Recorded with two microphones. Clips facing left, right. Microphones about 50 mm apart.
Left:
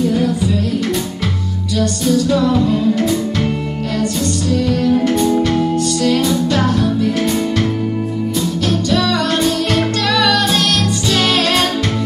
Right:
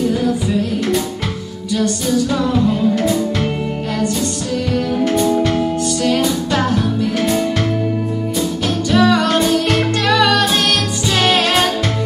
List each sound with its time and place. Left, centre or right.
2.3 s music: centre
3.0 s music: centre
5.0 s music: centre
7.2 s music: centre
8.9 s music: right